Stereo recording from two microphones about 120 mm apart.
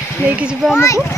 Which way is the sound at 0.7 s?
25° left (ahead or behind).